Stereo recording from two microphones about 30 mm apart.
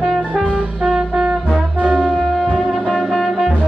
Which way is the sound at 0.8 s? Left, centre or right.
Right.